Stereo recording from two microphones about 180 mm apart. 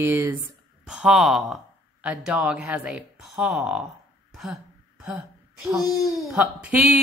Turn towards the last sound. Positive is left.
turn(degrees=-5)  # may be behind; listen again after turning